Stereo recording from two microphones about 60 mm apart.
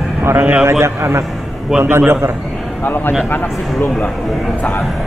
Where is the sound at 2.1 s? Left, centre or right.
Right.